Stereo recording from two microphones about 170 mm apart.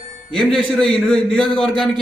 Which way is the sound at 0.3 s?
5° left (ahead or behind).